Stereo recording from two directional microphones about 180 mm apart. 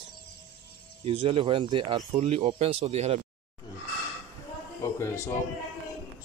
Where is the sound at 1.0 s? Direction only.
30° right (ahead or behind).